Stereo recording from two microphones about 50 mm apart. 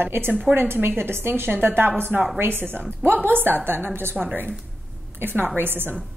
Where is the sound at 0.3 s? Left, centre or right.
Right.